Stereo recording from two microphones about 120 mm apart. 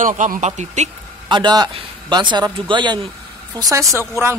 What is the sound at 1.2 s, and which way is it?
Speech, 40° right (ahead or behind).